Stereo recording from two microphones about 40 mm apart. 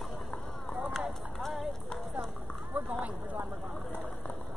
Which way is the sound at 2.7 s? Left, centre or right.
Right.